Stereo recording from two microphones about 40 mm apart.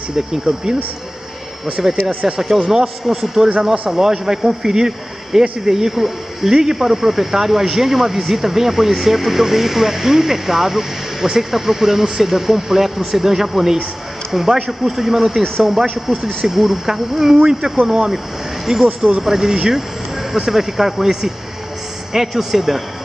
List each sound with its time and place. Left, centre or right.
0.1 s speech: centre
1.8 s speech: centre